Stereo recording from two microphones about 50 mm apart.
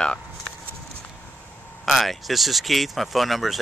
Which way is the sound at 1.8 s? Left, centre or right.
Centre.